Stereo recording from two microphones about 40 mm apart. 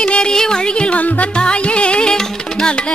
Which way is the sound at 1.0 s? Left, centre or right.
Left.